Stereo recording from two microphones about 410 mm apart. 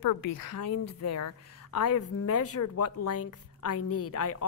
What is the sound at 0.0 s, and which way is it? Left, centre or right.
Speech, left.